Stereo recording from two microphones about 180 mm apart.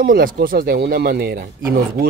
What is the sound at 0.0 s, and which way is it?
Speech, 55° right (ahead or behind).